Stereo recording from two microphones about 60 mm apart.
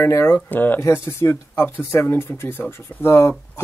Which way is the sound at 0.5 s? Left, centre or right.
Left.